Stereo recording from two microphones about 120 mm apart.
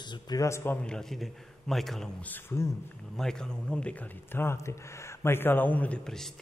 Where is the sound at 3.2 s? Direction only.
5° left (ahead or behind).